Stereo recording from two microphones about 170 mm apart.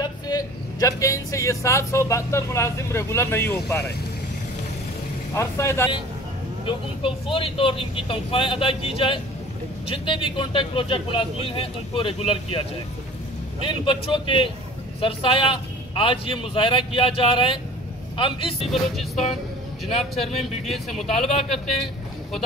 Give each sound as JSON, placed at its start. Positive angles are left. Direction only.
{"t": 0.0, "sound": "speech", "side_deg": 20}
{"t": 5.3, "sound": "speech", "side_deg": 15}
{"t": 6.6, "sound": "speech", "side_deg": 30}
{"t": 13.7, "sound": "a man's voice", "side_deg": 30}
{"t": 18.7, "sound": "vehicle", "side_deg": 0}
{"t": 20.6, "sound": "vehicle", "side_deg": 0}